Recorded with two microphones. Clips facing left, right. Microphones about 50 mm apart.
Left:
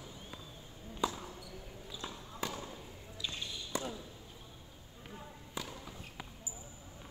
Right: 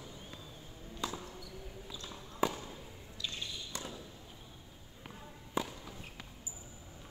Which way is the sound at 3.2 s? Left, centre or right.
Centre.